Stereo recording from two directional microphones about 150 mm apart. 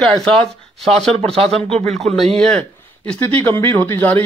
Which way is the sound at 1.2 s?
40° right (ahead or behind).